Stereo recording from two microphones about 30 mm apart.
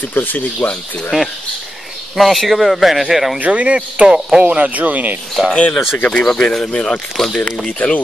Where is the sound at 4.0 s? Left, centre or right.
Right.